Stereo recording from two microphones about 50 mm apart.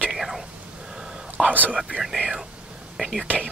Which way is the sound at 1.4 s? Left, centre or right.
Right.